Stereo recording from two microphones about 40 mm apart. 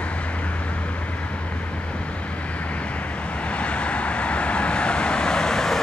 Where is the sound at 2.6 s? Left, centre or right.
Left; by 5.8 s centre.